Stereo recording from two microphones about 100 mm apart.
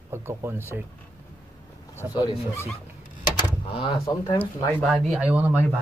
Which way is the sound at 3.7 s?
60° left (ahead or behind).